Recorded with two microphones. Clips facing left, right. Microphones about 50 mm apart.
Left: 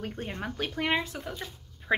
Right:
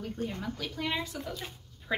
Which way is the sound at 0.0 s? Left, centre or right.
Left.